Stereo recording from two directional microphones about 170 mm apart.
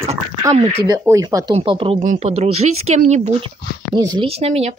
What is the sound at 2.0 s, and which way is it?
Speech, 45° right (ahead or behind).